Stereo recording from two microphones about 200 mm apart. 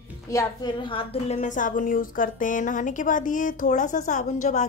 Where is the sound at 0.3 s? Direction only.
20° left (ahead or behind).